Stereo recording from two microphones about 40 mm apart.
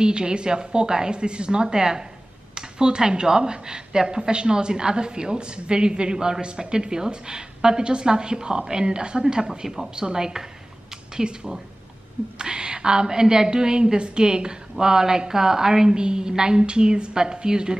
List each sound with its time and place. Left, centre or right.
0.0 s a woman's voice: right